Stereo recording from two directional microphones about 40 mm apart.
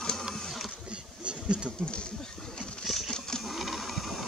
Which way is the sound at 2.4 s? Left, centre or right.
Centre.